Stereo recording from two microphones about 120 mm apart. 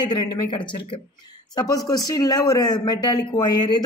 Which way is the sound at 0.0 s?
35° left (ahead or behind).